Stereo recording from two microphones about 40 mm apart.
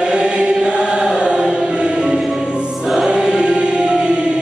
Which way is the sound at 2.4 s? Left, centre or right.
Right.